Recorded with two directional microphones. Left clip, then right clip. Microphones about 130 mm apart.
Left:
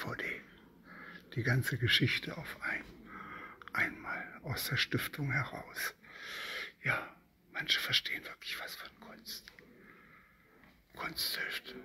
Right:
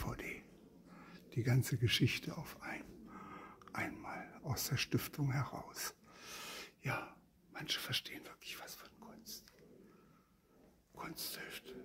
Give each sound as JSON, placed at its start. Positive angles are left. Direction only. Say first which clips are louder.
{"t": 0.0, "sound": "a sound", "louder": "left 7 dB", "side_deg": -25}
{"t": 4.5, "sound": "speech", "louder": "left 6 dB", "side_deg": -35}
{"t": 11.0, "sound": "speech", "louder": "left 10 dB", "side_deg": -15}